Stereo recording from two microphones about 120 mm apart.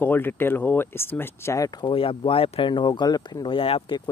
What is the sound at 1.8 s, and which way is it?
Speech, 50° left (ahead or behind).